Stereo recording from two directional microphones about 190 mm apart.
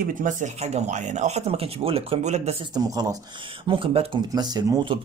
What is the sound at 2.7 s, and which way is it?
Speech, 20° right (ahead or behind).